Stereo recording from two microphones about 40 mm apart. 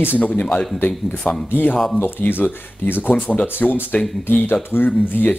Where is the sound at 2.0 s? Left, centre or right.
Left.